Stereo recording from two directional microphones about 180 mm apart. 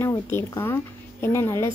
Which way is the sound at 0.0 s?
15° left (ahead or behind).